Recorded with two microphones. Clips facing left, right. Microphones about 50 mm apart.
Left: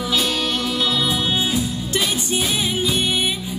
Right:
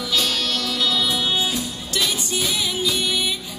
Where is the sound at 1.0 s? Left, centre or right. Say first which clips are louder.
Left 1 dB; centre.